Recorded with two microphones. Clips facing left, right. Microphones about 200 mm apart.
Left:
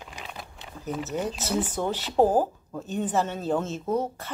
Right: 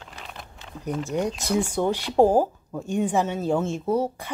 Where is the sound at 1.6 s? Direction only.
10° right (ahead or behind).